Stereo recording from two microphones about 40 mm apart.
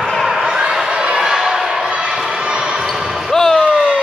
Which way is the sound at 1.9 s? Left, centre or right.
Right.